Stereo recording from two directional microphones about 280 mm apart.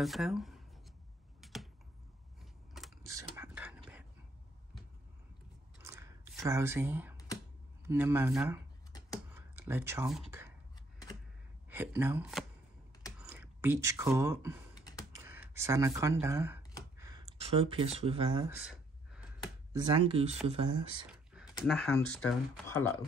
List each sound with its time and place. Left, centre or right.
0.0 s speech: centre
1.4 s computer keyboard: centre
2.8 s a sound: centre
5.8 s typing: centre
7.8 s speech: centre
9.3 s a sound: centre
11.7 s speech: centre
13.2 s computer keyboard: centre
15.1 s a sound: centre
17.4 s speech: centre
18.6 s a sound: centre
19.7 s speech: centre
21.1 s computer keyboard: centre
21.6 s speech: centre